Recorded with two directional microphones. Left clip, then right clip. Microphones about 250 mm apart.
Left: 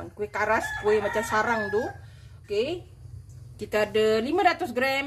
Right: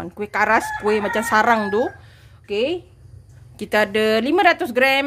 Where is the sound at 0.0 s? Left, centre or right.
Right.